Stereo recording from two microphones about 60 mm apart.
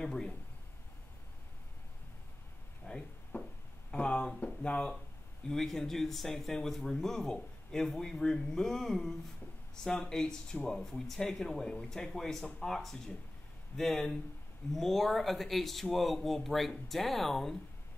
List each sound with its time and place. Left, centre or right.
0.0 s speech: centre
2.9 s a sound: left
3.3 s music: left
3.9 s speech: centre
5.5 s speech: centre